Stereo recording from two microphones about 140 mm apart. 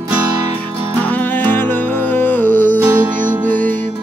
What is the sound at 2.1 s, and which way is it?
Music, 10° left (ahead or behind).